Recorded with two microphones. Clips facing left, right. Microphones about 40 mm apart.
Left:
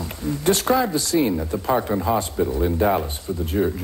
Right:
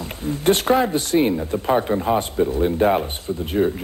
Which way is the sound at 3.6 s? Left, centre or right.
Centre.